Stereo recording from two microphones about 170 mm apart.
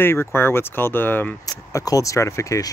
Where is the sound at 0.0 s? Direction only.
15° left (ahead or behind).